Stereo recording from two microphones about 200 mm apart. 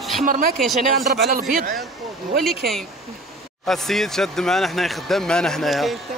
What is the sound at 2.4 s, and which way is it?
Speech, centre (ahead or behind).